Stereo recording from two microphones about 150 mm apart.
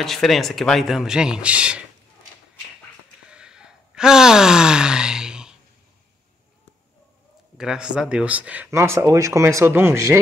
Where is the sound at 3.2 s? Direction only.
5° right (ahead or behind).